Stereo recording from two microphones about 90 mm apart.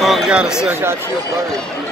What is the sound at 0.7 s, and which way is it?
Speech, 25° right (ahead or behind).